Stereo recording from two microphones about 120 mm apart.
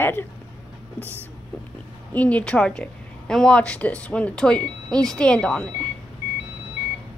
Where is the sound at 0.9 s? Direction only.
20° right (ahead or behind).